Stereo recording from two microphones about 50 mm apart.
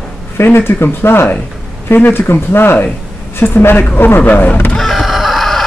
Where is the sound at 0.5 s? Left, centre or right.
Left.